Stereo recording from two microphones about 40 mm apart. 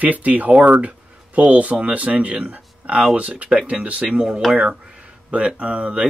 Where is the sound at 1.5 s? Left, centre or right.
Right.